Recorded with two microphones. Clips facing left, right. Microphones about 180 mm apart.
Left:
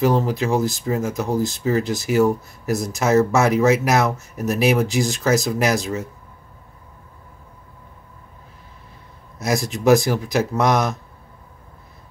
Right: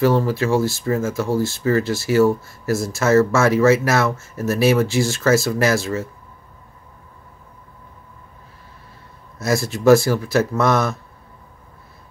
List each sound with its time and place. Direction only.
0.0 s speech: 15° left (ahead or behind)
9.4 s speech: 15° left (ahead or behind)